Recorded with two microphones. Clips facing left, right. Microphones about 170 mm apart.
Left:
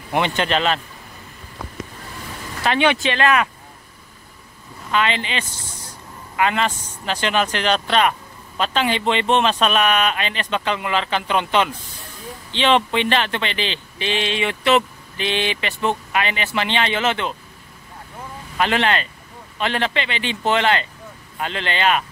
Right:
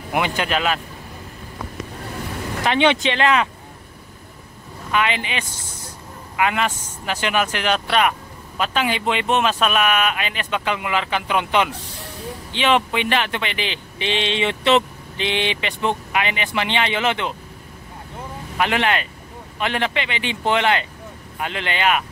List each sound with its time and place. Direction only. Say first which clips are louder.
0.4 s speech: left 2 dB; 5° right (ahead or behind)
2.6 s speech: right 1 dB; 20° right (ahead or behind)
4.9 s speech: left 1 dB; 15° right (ahead or behind)
18.6 s speech: left 1 dB; 15° right (ahead or behind)